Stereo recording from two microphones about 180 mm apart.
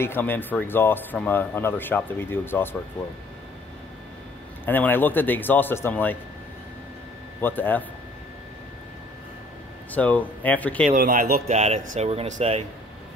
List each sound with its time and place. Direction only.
0.0 s speech: 10° left (ahead or behind)
4.6 s speech: 10° left (ahead or behind)
7.4 s speech: 10° left (ahead or behind)
9.9 s speech: 10° left (ahead or behind)
10.9 s speech: 50° right (ahead or behind)
11.4 s speech: 40° right (ahead or behind)